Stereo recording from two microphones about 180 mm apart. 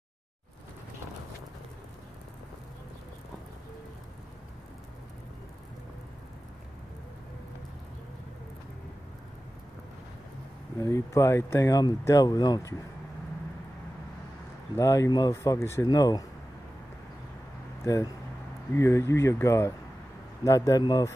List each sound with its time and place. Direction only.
10.8 s speech: 15° left (ahead or behind)
14.8 s speech: 15° left (ahead or behind)
18.8 s speech: 15° left (ahead or behind)